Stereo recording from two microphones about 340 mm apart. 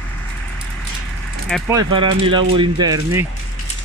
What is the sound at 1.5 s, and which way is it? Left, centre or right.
Speech, centre.